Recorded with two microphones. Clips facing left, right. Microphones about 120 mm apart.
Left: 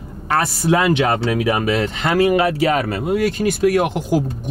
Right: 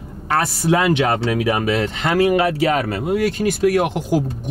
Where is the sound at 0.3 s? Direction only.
20° left (ahead or behind).